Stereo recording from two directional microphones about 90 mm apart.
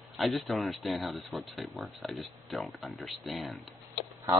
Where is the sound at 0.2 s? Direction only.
Centre (ahead or behind).